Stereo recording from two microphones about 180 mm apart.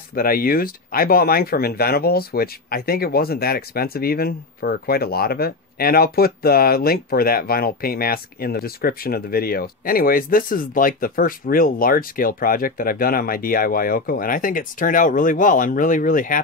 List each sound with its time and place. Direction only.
0.1 s speech: 55° left (ahead or behind)